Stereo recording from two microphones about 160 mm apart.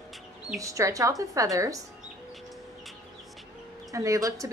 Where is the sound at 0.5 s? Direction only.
20° right (ahead or behind).